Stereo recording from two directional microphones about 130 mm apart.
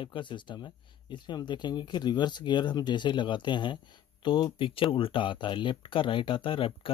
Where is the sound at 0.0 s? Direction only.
40° left (ahead or behind).